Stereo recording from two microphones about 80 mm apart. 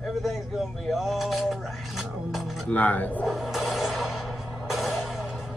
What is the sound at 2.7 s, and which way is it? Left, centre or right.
Speech, centre.